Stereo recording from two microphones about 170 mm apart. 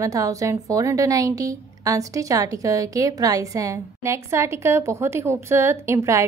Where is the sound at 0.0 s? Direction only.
20° right (ahead or behind).